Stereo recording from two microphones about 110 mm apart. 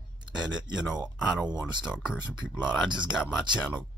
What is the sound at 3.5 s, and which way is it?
Speech, 45° right (ahead or behind).